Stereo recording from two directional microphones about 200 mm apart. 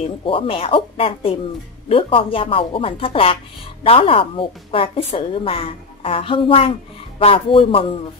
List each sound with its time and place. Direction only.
0.2 s a woman's voice: 25° left (ahead or behind)